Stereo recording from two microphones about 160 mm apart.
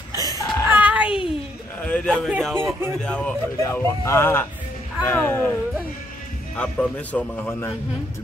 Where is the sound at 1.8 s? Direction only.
10° left (ahead or behind).